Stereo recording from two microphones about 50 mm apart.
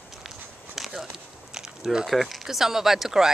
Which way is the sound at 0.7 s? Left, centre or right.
Centre.